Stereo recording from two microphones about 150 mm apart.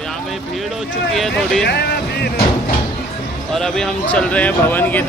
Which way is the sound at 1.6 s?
90° left.